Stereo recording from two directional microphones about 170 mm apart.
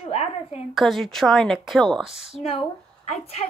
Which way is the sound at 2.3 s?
35° left (ahead or behind).